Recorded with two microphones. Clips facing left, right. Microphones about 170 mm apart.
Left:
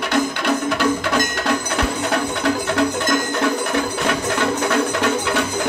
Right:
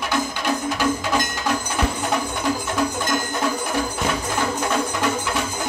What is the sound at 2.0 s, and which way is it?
Music, 70° left (ahead or behind).